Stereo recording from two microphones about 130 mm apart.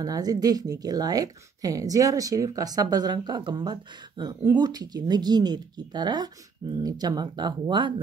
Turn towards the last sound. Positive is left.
turn(degrees=-35)  # may be behind; listen again after turning